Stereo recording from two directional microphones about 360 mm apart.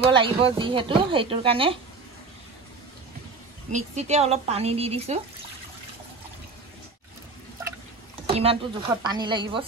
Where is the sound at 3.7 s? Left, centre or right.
Centre.